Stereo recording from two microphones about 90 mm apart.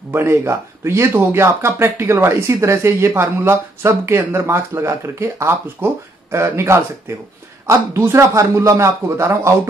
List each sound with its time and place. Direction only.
0.1 s a man's voice: 25° right (ahead or behind)